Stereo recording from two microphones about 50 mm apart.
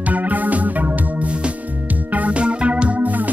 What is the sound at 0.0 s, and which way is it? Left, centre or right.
Music, right.